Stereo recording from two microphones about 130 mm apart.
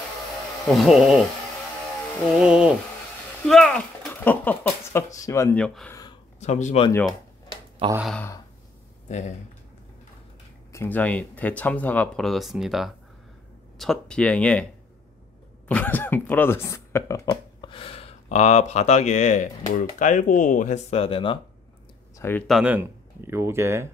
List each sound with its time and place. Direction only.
0.7 s speech: centre (ahead or behind)
2.3 s speech: 5° right (ahead or behind)
3.4 s speech: 5° left (ahead or behind); by 5.5 s 25° left (ahead or behind)
5.5 s speech: 10° left (ahead or behind)
6.4 s speech: 60° left (ahead or behind)
7.8 s speech: 45° right (ahead or behind)
10.7 s speech: 15° left (ahead or behind)
12.3 s speech: centre (ahead or behind)
15.7 s speech: 15° left (ahead or behind)
17.3 s speech: 40° left (ahead or behind)
22.5 s speech: 5° right (ahead or behind)
22.8 s speech: 20° right (ahead or behind)